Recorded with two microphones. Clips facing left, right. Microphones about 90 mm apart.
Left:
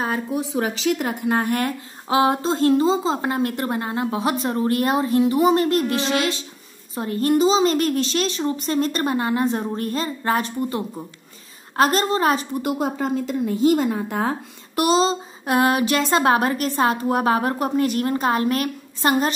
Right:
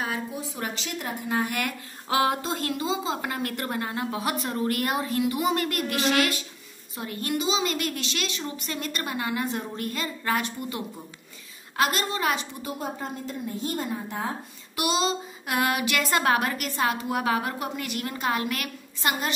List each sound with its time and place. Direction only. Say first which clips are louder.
0.3 s a woman's voice: left 10 dB; 90° left; by 1.4 s 75° left (ahead or behind)
1.4 s speech: left 6 dB; 35° left (ahead or behind)
7.0 s speech: left 11 dB; 35° left (ahead or behind)
12.6 s a woman's voice: left 11 dB; 85° left
14.8 s speech: left 7 dB; 35° left (ahead or behind)